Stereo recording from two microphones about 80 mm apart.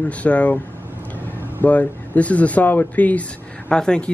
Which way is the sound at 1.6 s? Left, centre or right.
Centre.